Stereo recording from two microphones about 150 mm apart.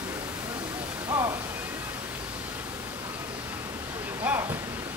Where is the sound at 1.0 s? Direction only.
25° right (ahead or behind).